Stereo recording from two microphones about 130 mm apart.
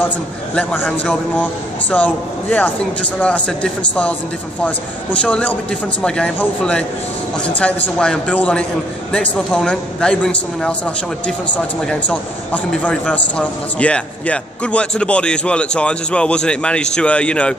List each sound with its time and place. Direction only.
0.6 s speech: 10° left (ahead or behind)